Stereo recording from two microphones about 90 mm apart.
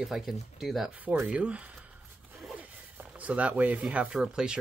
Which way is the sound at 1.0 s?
15° right (ahead or behind).